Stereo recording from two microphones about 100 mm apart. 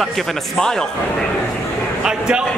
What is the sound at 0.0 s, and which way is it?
Speech, centre (ahead or behind).